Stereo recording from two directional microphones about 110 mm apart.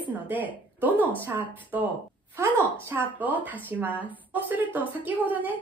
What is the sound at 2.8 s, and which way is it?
Speech, 20° right (ahead or behind).